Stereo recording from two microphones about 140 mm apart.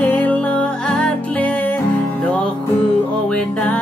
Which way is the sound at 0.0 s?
10° left (ahead or behind).